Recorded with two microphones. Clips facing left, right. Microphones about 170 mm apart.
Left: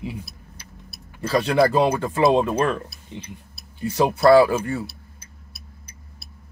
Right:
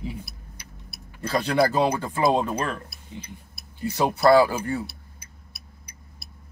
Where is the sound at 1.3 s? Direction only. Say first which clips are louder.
Left 3 dB; 70° left (ahead or behind).